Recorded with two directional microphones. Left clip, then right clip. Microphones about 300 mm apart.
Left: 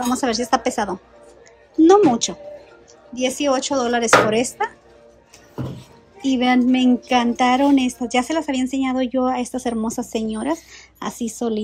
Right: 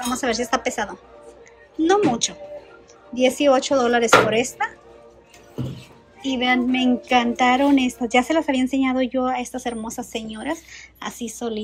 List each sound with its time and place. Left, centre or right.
0.0 s speech: centre
6.2 s speech: centre